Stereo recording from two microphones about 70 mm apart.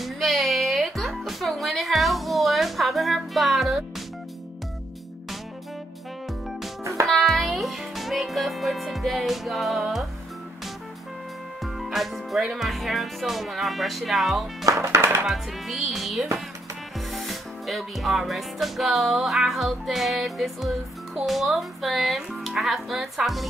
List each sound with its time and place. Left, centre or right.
0.0 s music: centre
7.1 s speech: centre
9.8 s music: centre
11.6 s music: centre
14.7 s speech: right
15.2 s music: centre